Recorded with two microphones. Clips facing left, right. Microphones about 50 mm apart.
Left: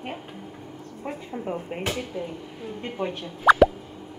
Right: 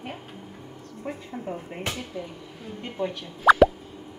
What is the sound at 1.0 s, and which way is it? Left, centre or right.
Speech, left.